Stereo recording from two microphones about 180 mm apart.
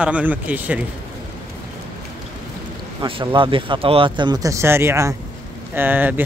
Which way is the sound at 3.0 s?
30° right (ahead or behind).